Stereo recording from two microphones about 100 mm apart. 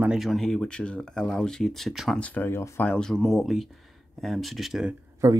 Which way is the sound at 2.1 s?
15° left (ahead or behind).